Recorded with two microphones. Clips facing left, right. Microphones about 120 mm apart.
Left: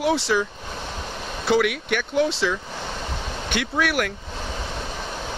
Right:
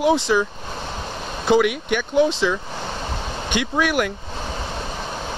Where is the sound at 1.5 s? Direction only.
Centre (ahead or behind).